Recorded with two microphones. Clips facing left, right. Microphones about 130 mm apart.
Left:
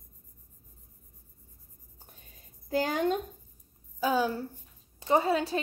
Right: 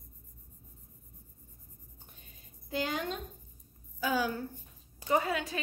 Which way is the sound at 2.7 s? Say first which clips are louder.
Left 7 dB; 40° left (ahead or behind).